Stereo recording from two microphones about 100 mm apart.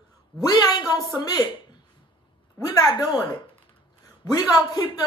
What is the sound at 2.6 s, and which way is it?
Speech, 40° left (ahead or behind).